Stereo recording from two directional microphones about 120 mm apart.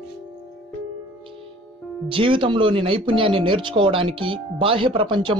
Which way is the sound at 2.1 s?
45° right (ahead or behind).